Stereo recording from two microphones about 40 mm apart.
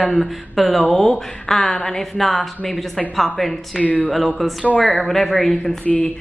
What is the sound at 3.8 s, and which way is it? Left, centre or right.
Speech, left.